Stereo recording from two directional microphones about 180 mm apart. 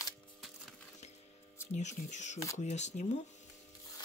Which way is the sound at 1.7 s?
40° left (ahead or behind).